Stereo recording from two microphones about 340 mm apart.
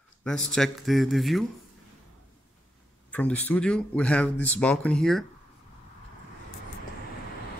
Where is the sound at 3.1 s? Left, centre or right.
Centre.